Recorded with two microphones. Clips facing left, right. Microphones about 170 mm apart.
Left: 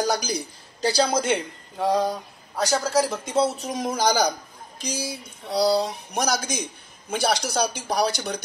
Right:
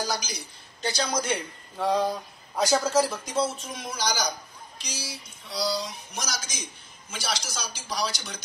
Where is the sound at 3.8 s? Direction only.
50° left (ahead or behind).